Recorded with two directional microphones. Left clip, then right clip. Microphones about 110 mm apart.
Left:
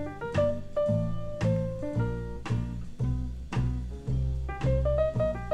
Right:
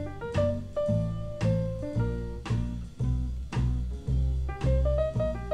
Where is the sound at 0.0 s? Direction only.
40° right (ahead or behind).